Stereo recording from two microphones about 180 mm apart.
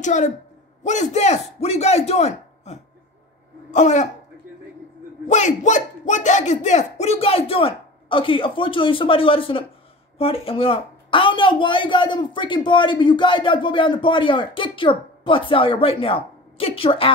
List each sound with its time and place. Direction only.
0.0 s a man's voice: 40° left (ahead or behind)
5.3 s speech: 40° left (ahead or behind)